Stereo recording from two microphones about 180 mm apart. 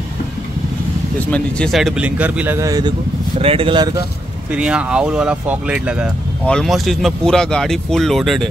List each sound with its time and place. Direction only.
1.3 s speech: 5° left (ahead or behind); by 2.9 s 20° right (ahead or behind)
3.3 s speech: 30° right (ahead or behind)
4.5 s speech: 5° right (ahead or behind)